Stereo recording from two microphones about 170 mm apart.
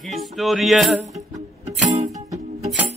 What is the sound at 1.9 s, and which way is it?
Music, 45° right (ahead or behind).